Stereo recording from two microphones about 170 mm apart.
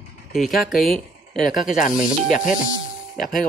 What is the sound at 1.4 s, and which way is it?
Speech, 50° left (ahead or behind).